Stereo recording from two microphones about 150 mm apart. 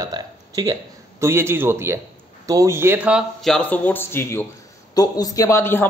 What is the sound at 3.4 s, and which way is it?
Speech, 5° left (ahead or behind).